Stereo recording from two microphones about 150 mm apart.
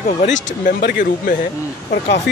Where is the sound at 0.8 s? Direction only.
90° left.